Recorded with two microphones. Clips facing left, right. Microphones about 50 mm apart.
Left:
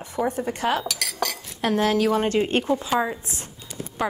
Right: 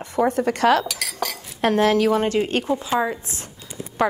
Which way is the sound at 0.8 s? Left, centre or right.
Centre.